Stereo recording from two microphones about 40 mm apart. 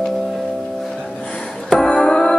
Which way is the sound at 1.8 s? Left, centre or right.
Left.